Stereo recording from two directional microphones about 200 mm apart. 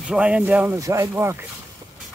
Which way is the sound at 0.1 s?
5° right (ahead or behind).